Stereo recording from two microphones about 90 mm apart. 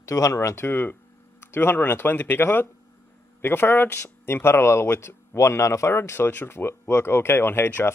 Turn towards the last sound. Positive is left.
turn(degrees=25)  # may be behind; listen again after turning